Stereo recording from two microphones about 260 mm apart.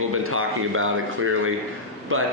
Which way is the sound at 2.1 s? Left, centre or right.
Right.